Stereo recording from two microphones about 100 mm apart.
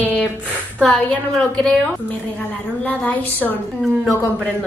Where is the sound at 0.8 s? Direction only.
10° left (ahead or behind).